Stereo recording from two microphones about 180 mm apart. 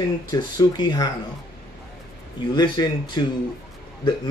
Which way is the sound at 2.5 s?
25° left (ahead or behind).